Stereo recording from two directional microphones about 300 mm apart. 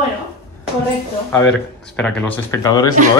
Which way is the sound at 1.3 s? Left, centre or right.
Centre.